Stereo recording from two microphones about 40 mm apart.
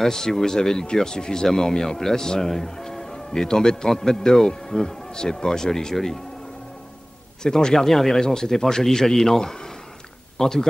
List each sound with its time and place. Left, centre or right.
0.0 s speech: centre
7.4 s speech: centre